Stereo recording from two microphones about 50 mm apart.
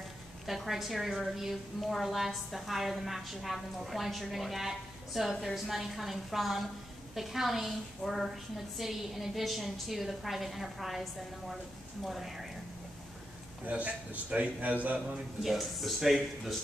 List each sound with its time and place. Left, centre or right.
0.5 s a woman's voice: centre
13.7 s a man's voice: right
15.4 s a woman's voice: centre